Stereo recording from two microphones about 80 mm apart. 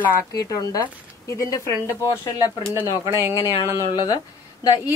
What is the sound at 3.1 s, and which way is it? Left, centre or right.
Speech, right.